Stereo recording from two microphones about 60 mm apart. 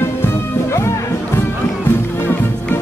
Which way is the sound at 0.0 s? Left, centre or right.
Left.